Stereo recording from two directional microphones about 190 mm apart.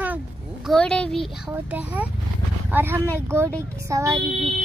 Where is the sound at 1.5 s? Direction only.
10° right (ahead or behind).